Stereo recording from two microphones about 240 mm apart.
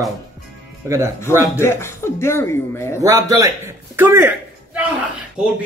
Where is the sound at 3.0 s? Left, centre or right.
Centre.